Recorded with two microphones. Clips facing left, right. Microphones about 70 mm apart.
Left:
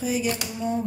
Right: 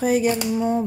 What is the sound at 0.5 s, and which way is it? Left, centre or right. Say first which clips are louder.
Speech: right 6 dB; right.